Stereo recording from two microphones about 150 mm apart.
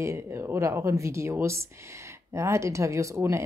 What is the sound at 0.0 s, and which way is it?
Speech, 20° right (ahead or behind).